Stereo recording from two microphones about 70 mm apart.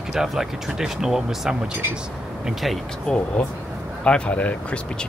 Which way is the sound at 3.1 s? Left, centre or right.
Centre.